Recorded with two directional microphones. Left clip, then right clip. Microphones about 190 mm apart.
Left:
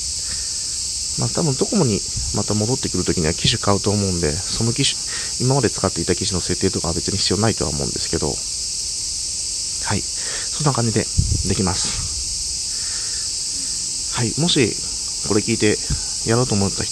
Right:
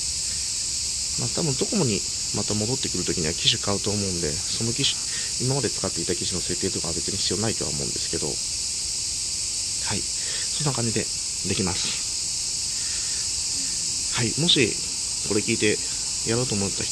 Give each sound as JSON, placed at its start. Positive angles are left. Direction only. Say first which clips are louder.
{"t": 1.4, "sound": "speech", "louder": "left 6 dB", "side_deg": 20}
{"t": 5.5, "sound": "cricket", "louder": "left 9 dB", "side_deg": 35}
{"t": 7.2, "sound": "cricket", "louder": "left 7 dB", "side_deg": 35}
{"t": 10.6, "sound": "speech", "louder": "left 9 dB", "side_deg": 30}
{"t": 14.4, "sound": "speech", "louder": "left 2 dB", "side_deg": 25}